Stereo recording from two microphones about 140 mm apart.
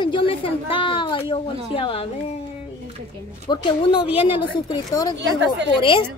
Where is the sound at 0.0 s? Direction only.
35° left (ahead or behind).